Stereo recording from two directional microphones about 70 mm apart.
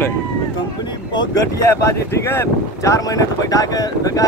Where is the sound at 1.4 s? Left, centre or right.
Left.